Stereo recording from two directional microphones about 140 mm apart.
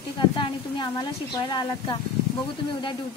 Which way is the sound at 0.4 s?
30° left (ahead or behind).